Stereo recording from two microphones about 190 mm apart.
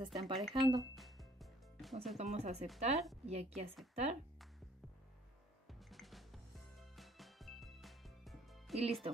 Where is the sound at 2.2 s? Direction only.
35° right (ahead or behind).